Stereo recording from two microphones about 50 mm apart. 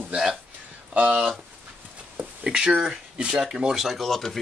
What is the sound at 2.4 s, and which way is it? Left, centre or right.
Speech, centre.